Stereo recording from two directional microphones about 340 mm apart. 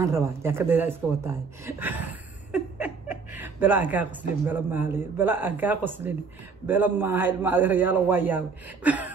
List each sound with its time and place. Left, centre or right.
0.0 s speech: centre